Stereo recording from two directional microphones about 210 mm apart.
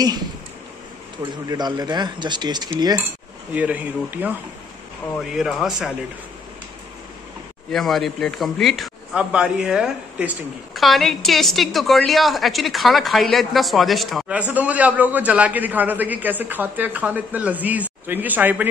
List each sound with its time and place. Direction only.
1.5 s speech: 20° right (ahead or behind)
3.5 s a man's voice: 5° right (ahead or behind)
7.7 s a man's voice: centre (ahead or behind)